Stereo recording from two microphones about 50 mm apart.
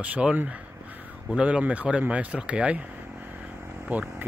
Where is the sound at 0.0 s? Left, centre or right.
Right.